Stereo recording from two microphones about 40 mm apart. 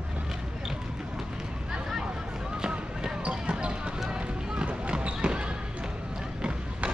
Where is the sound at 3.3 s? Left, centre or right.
Right.